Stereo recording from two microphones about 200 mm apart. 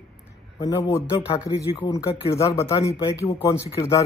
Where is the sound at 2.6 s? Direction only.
30° left (ahead or behind).